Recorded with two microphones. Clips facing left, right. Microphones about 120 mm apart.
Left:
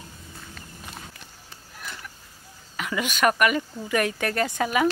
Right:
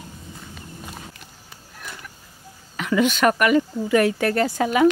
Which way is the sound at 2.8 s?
10° left (ahead or behind).